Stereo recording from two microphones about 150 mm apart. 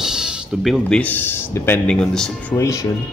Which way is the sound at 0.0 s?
5° right (ahead or behind).